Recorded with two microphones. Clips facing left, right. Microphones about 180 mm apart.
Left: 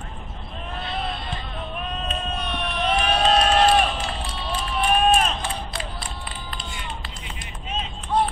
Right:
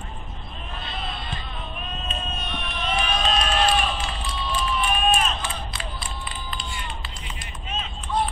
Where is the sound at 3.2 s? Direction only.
45° left (ahead or behind).